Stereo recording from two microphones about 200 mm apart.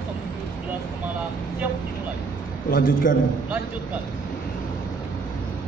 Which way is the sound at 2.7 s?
40° left (ahead or behind).